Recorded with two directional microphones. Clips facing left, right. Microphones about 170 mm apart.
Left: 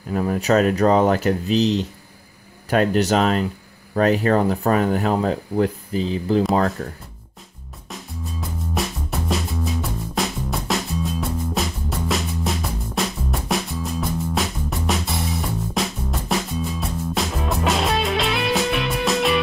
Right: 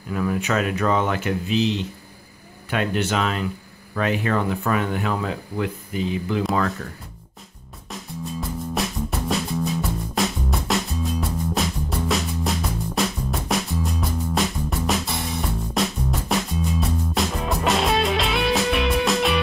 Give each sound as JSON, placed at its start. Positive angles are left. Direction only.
{"t": 0.1, "sound": "speech", "side_deg": 35}
{"t": 7.9, "sound": "music", "side_deg": 0}